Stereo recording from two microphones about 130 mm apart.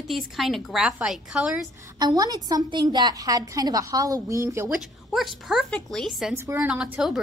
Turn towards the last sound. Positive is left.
turn(degrees=-5)  # may be behind; listen again after turning